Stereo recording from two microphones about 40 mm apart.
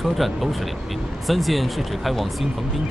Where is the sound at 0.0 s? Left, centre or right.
Centre.